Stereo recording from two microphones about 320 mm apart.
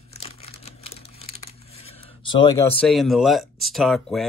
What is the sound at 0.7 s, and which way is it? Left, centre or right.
Crumpling, centre.